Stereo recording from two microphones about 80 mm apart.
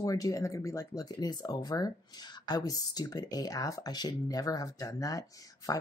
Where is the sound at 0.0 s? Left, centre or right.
Left.